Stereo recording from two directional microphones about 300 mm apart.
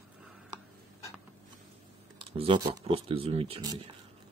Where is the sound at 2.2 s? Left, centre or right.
Centre.